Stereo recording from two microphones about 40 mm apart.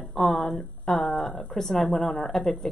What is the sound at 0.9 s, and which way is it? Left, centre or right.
Speech, left.